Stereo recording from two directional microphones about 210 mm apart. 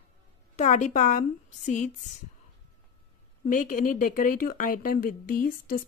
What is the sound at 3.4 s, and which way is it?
Speech, 40° left (ahead or behind).